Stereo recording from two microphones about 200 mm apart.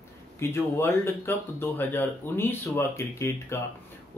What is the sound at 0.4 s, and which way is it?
Speech, 10° left (ahead or behind).